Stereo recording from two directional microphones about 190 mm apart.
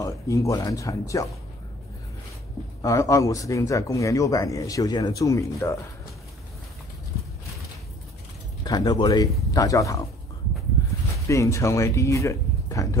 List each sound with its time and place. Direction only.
0.0 s speech: 15° left (ahead or behind)
2.8 s speech: 15° left (ahead or behind)
8.6 s speech: 20° left (ahead or behind)
11.2 s speech: 15° left (ahead or behind)